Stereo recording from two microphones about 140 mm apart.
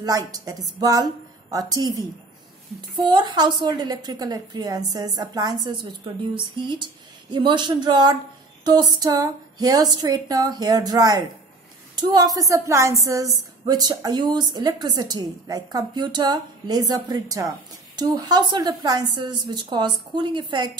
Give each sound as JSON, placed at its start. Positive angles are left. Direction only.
{"t": 0.0, "sound": "a woman's voice", "side_deg": -25}